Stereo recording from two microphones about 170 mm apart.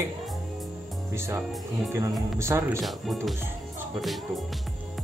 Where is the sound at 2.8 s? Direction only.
Centre (ahead or behind).